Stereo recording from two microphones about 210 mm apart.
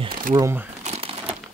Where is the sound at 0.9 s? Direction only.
30° right (ahead or behind).